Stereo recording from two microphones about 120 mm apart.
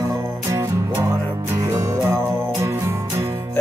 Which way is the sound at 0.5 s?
20° right (ahead or behind).